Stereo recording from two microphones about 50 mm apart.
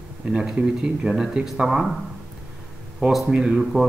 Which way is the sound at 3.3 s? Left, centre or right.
Centre.